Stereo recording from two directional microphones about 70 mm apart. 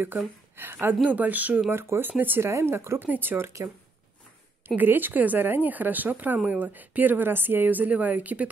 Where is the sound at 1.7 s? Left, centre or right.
Right.